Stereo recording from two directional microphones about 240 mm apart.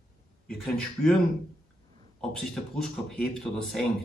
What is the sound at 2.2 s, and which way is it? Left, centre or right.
Speech, centre.